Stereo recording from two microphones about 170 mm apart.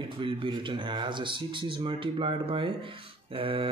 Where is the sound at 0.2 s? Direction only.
30° right (ahead or behind).